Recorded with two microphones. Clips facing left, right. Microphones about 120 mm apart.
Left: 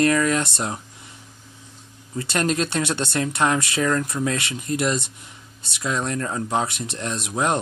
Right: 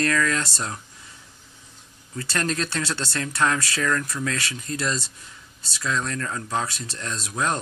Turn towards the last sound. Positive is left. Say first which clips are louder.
# left 4 dB
turn(degrees=20)  # may be behind; listen again after turning